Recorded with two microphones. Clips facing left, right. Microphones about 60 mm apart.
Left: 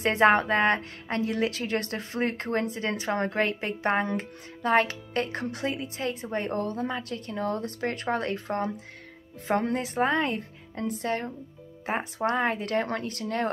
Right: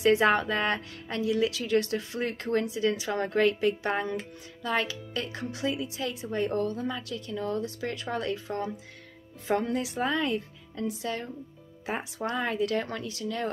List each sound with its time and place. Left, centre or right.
0.0 s a woman's voice: left